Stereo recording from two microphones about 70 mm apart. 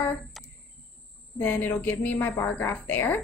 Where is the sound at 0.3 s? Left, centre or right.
Centre.